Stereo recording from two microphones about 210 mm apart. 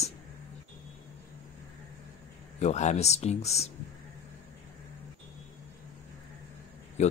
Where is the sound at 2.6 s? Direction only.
35° left (ahead or behind).